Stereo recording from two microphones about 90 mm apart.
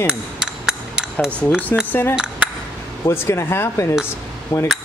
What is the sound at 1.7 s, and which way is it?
Speech, 30° left (ahead or behind).